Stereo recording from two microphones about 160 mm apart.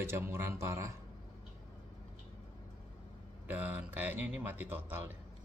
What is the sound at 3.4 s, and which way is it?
A man's voice, 10° right (ahead or behind).